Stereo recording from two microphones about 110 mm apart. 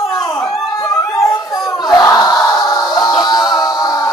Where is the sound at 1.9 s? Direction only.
35° left (ahead or behind).